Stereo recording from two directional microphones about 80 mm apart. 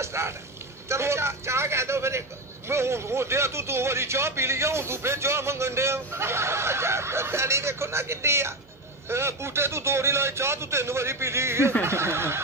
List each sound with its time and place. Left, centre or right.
0.0 s a man's voice: right